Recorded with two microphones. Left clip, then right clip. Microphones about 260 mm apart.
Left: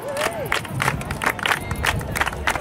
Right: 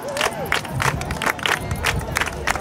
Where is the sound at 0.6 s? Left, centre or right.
Centre.